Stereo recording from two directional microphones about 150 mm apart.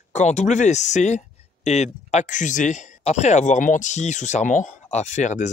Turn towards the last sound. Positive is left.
turn(degrees=55)  # may be behind; listen again after turning